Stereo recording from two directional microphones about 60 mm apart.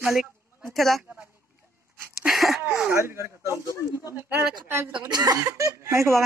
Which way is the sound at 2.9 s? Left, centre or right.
Right.